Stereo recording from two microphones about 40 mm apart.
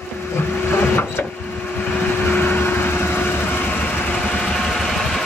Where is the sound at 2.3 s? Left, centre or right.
Left.